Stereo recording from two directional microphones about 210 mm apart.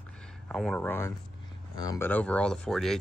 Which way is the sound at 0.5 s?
5° left (ahead or behind).